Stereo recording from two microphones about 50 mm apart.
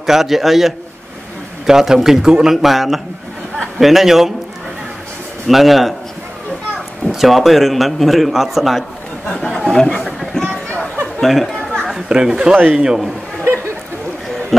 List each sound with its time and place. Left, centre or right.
0.0 s a man's voice: centre
5.5 s a man's voice: centre
7.1 s a man's voice: centre
9.3 s speech: centre
10.0 s a sound: centre
11.1 s speech: centre
12.1 s a man's voice: centre
14.5 s speech: centre